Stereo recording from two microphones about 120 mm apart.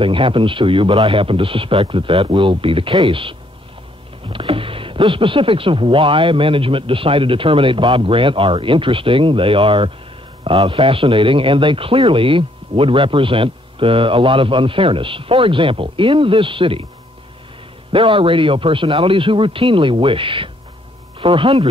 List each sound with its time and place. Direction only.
0.0 s speech: 45° right (ahead or behind)
17.9 s speech: 45° right (ahead or behind)